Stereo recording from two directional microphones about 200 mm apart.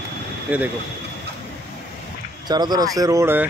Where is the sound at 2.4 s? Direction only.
20° right (ahead or behind).